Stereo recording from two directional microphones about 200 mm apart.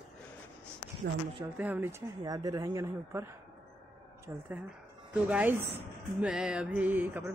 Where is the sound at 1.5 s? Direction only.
10° right (ahead or behind).